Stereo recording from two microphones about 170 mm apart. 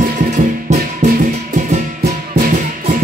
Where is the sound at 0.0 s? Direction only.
50° right (ahead or behind).